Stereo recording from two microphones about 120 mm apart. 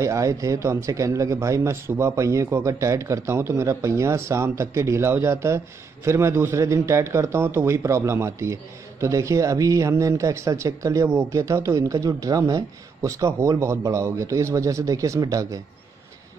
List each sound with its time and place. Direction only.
0.0 s speech: 25° right (ahead or behind)